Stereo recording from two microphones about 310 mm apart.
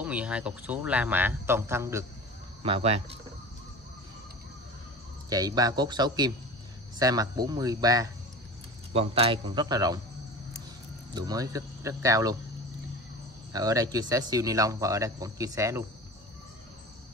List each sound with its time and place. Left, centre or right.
0.0 s speech: centre
5.3 s speech: centre
11.1 s speech: centre
13.5 s speech: centre